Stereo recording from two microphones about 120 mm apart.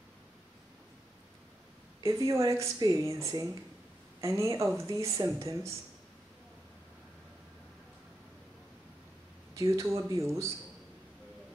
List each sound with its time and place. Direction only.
2.0 s speech: 30° right (ahead or behind)
9.6 s speech: 25° right (ahead or behind)